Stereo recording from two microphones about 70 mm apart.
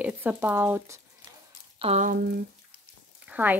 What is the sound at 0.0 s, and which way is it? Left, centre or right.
Speech, right.